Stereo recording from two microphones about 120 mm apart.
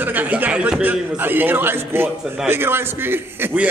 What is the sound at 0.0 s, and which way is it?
A man's voice, 15° right (ahead or behind).